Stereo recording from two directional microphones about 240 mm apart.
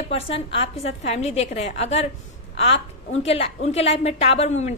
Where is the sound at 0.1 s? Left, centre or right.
Left.